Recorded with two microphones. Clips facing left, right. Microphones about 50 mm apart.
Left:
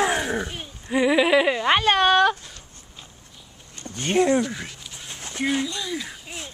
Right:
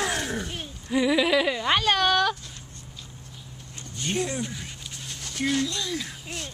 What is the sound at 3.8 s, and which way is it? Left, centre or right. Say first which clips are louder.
Speech: left 8 dB; left.